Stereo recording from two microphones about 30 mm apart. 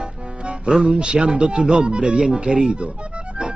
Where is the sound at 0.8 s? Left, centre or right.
Right.